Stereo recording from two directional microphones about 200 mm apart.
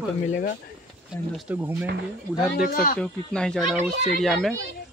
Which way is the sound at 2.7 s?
45° left (ahead or behind).